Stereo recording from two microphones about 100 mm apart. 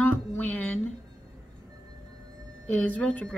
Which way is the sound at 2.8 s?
15° left (ahead or behind).